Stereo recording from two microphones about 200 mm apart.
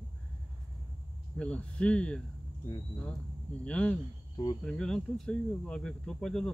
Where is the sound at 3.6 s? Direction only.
5° left (ahead or behind).